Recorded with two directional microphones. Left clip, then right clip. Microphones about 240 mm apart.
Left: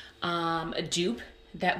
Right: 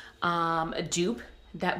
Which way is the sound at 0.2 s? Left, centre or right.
Centre.